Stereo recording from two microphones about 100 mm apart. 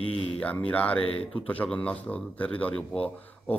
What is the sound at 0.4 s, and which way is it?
A man's voice, 15° left (ahead or behind).